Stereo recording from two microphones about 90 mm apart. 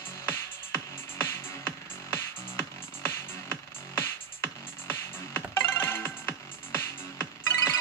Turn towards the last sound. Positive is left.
turn(degrees=30)  # may be behind; listen again after turning